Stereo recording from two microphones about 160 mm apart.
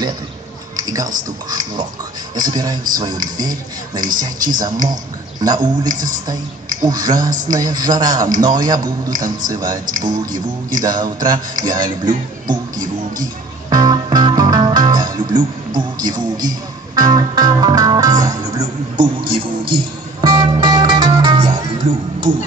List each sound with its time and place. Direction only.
0.7 s a man's voice: 25° right (ahead or behind)
12.7 s music: 55° right (ahead or behind)
13.2 s speech: 25° right (ahead or behind)
19.7 s music: 25° right (ahead or behind)
22.3 s music: 55° right (ahead or behind)